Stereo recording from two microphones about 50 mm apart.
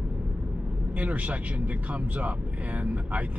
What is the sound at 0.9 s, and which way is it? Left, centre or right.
Speech, right.